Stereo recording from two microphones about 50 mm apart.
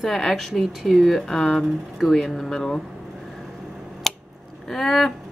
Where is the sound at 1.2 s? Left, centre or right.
Centre.